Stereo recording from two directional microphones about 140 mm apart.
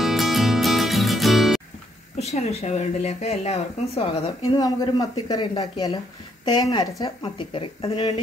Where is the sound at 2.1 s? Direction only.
50° left (ahead or behind).